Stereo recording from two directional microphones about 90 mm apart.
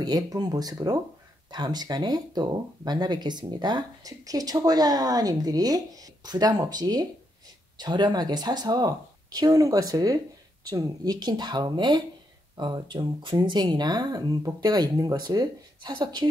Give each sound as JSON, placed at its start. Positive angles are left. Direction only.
{"t": 0.0, "sound": "speech", "side_deg": -45}